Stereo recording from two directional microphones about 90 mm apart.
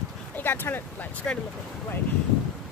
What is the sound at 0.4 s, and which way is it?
Speech, 25° left (ahead or behind).